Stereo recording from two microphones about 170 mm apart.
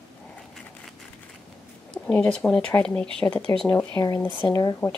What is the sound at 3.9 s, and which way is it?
Speech, 20° left (ahead or behind).